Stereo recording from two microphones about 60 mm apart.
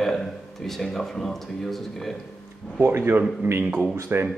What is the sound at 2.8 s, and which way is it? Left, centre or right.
A man's voice, right.